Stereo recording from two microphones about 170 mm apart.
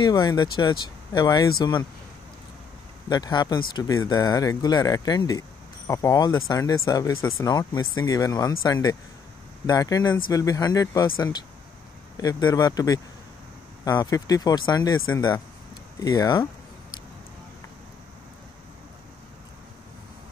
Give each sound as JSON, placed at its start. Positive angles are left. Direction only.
{"t": 0.0, "sound": "speech", "side_deg": 25}
{"t": 3.1, "sound": "speech", "side_deg": 25}